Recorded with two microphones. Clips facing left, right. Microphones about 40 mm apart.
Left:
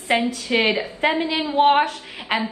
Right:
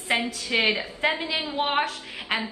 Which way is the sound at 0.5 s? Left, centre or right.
Left.